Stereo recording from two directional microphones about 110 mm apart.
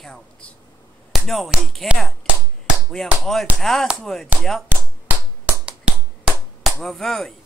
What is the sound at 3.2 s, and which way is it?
A man's voice, centre (ahead or behind).